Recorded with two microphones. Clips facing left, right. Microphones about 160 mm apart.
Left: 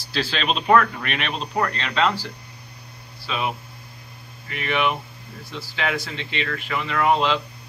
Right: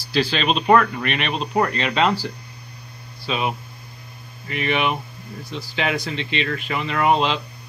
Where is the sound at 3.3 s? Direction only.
20° right (ahead or behind).